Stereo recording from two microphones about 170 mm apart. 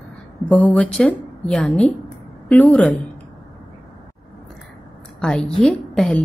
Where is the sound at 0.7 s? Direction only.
5° left (ahead or behind).